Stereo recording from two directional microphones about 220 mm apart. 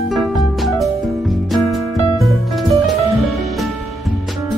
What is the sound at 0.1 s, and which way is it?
Music, centre (ahead or behind).